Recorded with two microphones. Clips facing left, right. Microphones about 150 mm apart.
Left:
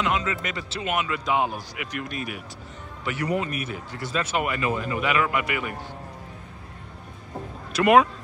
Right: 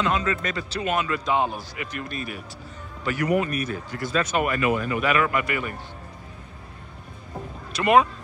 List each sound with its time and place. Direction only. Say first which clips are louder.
0.0 s speech: right 2 dB; 20° left (ahead or behind)
3.1 s speech: right 3 dB; 25° left (ahead or behind)
7.7 s speech: left 1 dB; 10° left (ahead or behind)